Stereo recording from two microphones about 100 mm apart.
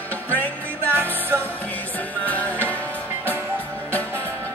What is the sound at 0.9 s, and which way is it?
Music, 20° right (ahead or behind).